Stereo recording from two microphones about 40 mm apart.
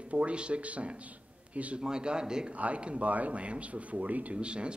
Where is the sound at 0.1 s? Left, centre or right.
Right.